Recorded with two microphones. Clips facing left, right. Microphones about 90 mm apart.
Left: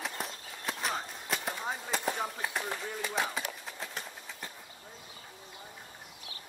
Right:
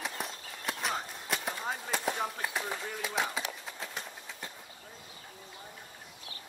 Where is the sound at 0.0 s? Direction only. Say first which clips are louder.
Even; centre (ahead or behind).